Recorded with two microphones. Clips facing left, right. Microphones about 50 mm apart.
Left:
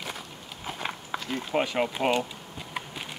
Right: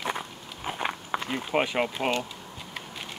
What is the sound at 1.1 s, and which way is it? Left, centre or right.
Speech, right.